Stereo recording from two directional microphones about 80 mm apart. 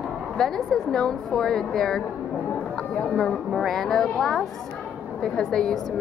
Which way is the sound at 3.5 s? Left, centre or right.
Centre.